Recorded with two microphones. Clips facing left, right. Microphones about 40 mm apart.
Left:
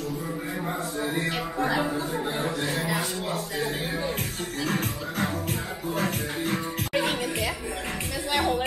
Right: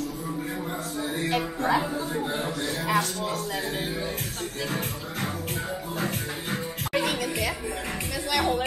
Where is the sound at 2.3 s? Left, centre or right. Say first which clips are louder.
Left 1 dB; centre.